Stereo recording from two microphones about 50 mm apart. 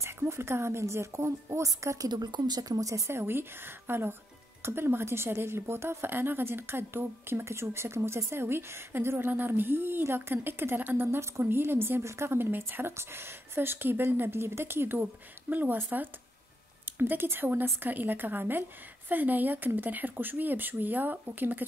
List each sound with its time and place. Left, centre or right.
0.0 s speech: right
2.9 s speech: right
11.0 s speech: right
11.4 s speech: right
12.0 s a woman's voice: right